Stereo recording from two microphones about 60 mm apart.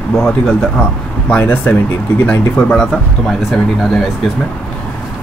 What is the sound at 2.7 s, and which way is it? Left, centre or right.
Speech, centre.